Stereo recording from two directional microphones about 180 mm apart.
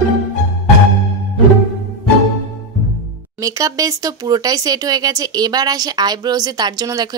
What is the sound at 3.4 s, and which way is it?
Speech, 20° right (ahead or behind).